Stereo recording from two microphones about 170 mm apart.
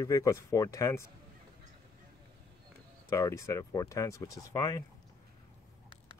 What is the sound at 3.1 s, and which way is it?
Speech, 15° left (ahead or behind).